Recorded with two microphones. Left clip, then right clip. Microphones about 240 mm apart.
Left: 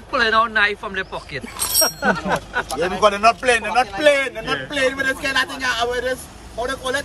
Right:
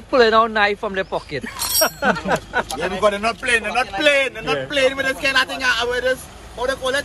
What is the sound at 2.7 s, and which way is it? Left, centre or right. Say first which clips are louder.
A man's voice: left 3 dB; left.